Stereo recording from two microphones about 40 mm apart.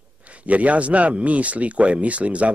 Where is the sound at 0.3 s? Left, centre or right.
Right.